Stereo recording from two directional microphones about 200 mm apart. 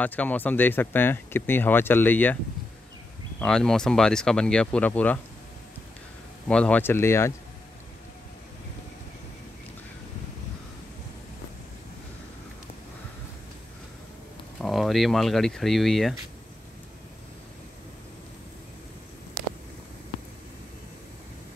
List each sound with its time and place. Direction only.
0.0 s speech: 10° left (ahead or behind)
3.3 s speech: 5° left (ahead or behind)
6.4 s speech: 5° left (ahead or behind)
14.6 s speech: centre (ahead or behind)